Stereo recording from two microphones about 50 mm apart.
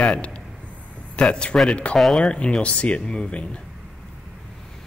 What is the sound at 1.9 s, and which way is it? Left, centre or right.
Speech, centre.